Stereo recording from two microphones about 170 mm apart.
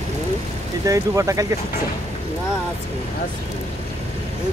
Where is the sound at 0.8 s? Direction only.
20° right (ahead or behind).